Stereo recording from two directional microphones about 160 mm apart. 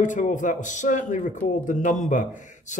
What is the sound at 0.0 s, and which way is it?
Speech, 50° left (ahead or behind).